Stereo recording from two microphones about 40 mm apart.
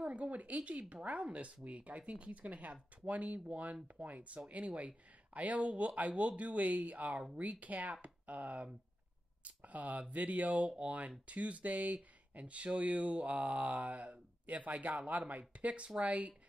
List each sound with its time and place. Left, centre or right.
0.0 s speech: right